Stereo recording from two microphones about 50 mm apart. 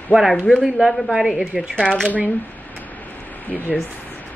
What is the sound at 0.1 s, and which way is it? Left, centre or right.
Speech, right.